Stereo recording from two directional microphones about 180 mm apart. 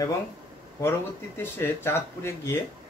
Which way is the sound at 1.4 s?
15° left (ahead or behind).